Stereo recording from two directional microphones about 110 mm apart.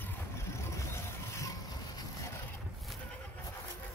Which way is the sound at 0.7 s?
25° left (ahead or behind).